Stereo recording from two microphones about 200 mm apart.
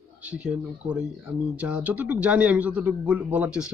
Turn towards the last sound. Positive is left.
turn(degrees=-5)  # may be behind; listen again after turning